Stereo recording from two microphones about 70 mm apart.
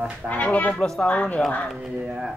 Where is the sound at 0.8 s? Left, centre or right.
Centre.